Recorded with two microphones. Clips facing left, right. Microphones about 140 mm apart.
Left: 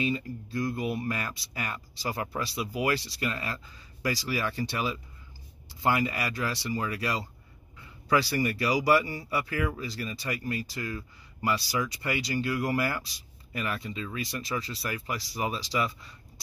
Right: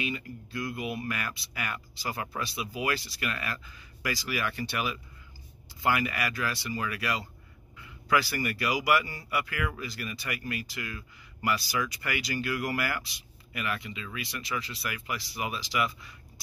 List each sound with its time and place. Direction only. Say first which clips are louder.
0.0 s speech: left 5 dB; 35° left (ahead or behind)